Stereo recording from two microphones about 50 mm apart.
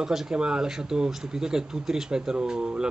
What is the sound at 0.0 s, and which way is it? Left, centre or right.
Speech, centre.